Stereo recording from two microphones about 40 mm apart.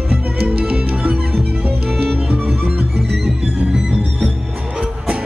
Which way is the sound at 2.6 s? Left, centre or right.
Right.